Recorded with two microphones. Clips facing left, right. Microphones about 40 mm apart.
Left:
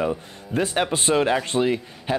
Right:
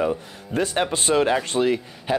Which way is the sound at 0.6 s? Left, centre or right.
Left.